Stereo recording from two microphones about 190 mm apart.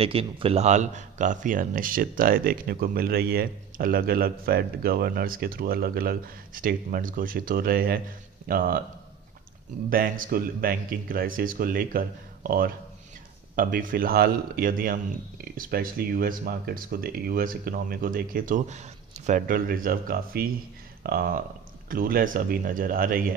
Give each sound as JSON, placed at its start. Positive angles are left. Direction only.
{"t": 0.0, "sound": "speech", "side_deg": -30}
{"t": 9.8, "sound": "speech", "side_deg": -50}